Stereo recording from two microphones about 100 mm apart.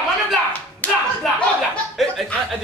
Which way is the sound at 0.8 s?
15° left (ahead or behind).